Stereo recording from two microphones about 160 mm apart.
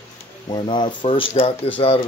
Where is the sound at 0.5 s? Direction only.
30° left (ahead or behind).